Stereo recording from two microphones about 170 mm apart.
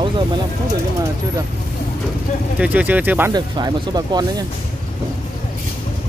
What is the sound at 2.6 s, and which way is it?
Speech, 10° right (ahead or behind).